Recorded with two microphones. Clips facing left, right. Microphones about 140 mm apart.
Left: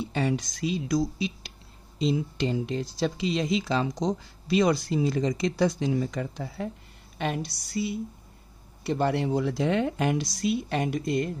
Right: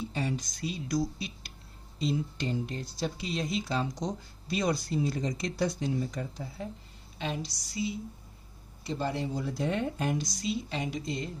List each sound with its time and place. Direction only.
0.0 s speech: 75° left (ahead or behind)
7.2 s music: 60° left (ahead or behind)
8.8 s speech: 70° left (ahead or behind)